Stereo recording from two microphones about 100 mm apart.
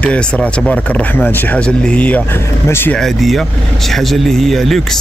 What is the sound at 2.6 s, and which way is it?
Speech, 25° left (ahead or behind).